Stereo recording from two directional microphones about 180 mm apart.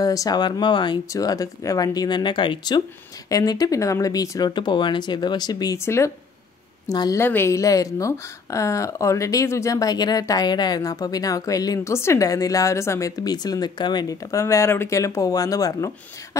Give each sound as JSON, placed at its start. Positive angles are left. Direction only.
{"t": 0.0, "sound": "a woman's voice", "side_deg": 20}